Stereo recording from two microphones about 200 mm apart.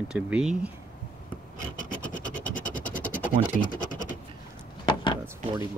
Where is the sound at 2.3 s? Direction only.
40° left (ahead or behind).